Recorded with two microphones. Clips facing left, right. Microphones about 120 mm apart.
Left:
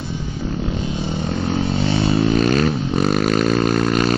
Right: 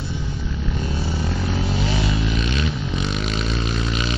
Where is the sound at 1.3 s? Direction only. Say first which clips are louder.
Left 4 dB; 55° left (ahead or behind).